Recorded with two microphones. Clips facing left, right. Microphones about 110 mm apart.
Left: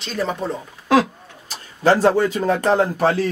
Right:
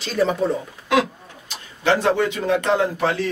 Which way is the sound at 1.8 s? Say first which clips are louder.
Left 3 dB; 35° left (ahead or behind).